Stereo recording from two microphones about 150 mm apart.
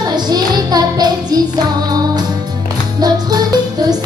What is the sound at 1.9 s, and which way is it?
Music, 25° right (ahead or behind).